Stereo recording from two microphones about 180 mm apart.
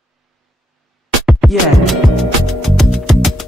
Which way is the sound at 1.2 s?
5° right (ahead or behind).